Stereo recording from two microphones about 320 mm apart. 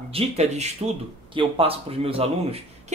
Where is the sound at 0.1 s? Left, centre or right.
Centre.